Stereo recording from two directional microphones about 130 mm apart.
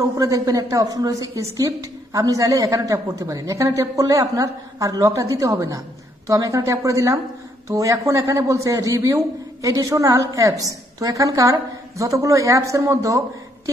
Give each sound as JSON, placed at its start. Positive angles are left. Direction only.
{"t": 0.2, "sound": "a man's voice", "side_deg": -30}